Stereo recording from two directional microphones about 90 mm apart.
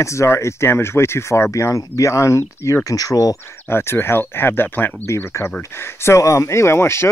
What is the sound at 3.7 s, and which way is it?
Speech, 25° left (ahead or behind).